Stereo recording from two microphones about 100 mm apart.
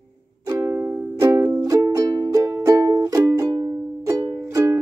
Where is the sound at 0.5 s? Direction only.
30° right (ahead or behind).